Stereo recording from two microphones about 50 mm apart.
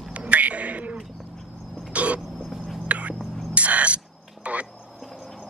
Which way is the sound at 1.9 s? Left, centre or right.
Right.